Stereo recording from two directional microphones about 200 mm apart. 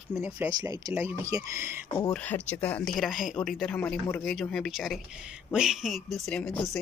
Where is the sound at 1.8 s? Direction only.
20° left (ahead or behind).